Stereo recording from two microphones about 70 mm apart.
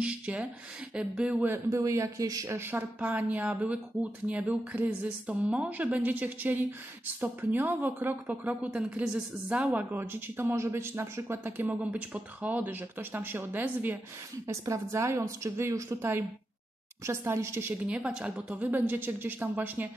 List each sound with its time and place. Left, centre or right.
0.0 s speech: centre
1.7 s a woman's voice: right
2.4 s a woman's voice: right
3.0 s speech: right
9.7 s speech: right
14.5 s a woman's voice: right
17.8 s speech: centre